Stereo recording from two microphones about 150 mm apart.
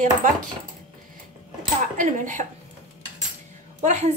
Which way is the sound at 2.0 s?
55° right (ahead or behind).